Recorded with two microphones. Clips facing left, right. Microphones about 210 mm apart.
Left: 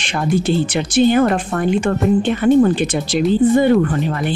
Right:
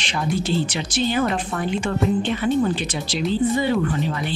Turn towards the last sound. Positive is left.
turn(degrees=50)  # may be behind; listen again after turning